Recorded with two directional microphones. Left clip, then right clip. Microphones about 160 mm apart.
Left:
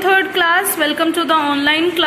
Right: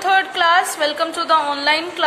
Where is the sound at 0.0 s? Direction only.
15° right (ahead or behind).